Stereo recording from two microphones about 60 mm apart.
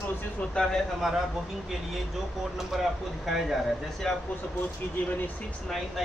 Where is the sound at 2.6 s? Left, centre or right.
Centre.